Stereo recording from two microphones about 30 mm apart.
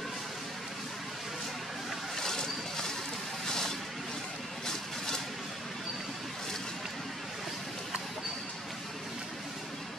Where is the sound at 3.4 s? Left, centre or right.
Centre.